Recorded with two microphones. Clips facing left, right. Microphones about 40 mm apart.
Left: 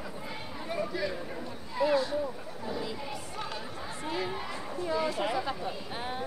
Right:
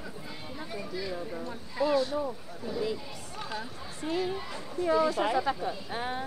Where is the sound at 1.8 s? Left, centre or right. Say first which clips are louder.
Even; left.